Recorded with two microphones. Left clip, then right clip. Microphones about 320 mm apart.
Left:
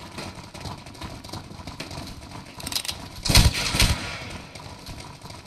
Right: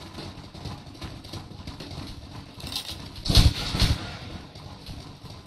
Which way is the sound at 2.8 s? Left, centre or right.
Left.